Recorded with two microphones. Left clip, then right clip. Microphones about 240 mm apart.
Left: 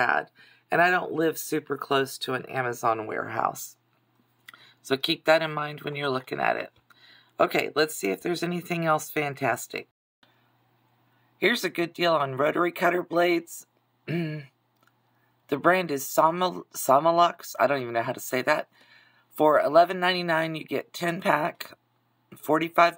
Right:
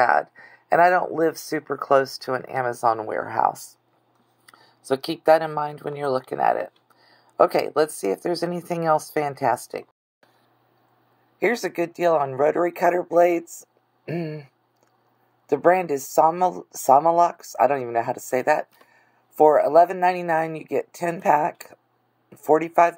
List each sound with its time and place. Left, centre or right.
0.0 s speech: centre
5.2 s speech: left
11.3 s speech: left
12.7 s speech: left
22.5 s speech: centre